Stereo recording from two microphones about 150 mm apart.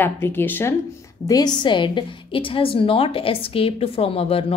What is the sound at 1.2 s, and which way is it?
A woman's voice, 25° left (ahead or behind).